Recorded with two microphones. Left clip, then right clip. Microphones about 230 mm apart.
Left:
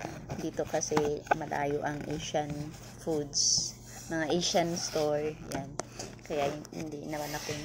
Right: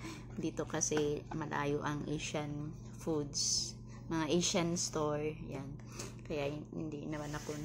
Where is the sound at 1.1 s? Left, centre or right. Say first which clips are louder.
Left 9 dB; centre.